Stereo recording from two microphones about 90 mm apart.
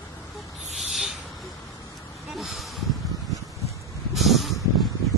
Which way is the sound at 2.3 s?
Centre (ahead or behind).